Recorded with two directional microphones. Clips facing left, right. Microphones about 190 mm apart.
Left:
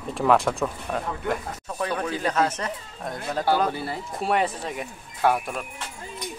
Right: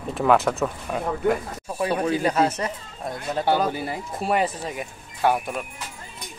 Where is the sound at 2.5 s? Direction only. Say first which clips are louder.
Right 2 dB; 10° right (ahead or behind).